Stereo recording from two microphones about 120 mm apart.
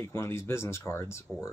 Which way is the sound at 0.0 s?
25° left (ahead or behind).